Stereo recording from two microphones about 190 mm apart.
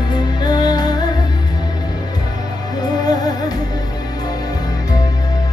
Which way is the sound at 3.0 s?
20° left (ahead or behind).